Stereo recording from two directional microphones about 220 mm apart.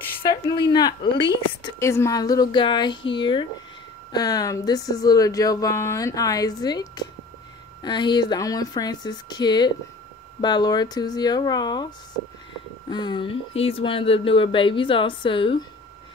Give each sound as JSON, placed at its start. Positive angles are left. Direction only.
{"t": 0.3, "sound": "speech", "side_deg": 20}
{"t": 12.9, "sound": "speech", "side_deg": 20}